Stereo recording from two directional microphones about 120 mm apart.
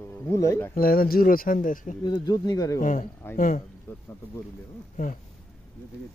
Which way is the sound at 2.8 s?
90° left.